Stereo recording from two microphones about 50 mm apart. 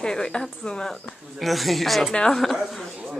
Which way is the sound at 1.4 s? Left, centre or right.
Centre.